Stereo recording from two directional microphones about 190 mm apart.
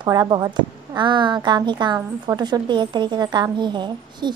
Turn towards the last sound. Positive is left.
turn(degrees=-25)  # may be behind; listen again after turning